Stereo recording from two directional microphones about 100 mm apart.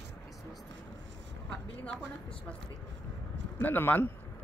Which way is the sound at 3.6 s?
20° left (ahead or behind).